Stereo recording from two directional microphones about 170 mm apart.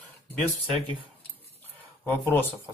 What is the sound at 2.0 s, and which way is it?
Speech, 10° left (ahead or behind).